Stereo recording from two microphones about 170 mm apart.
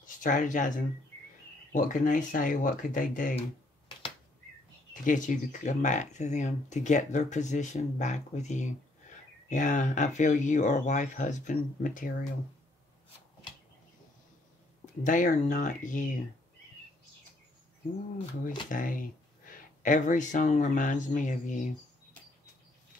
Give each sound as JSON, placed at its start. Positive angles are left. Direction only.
{"t": 0.0, "sound": "speech", "side_deg": 50}
{"t": 5.0, "sound": "speech", "side_deg": 50}
{"t": 15.0, "sound": "speech", "side_deg": 50}
{"t": 18.7, "sound": "speech", "side_deg": 50}